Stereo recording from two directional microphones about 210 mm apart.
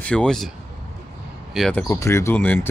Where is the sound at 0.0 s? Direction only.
5° left (ahead or behind).